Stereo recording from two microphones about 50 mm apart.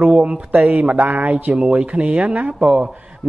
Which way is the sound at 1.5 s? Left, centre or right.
Right.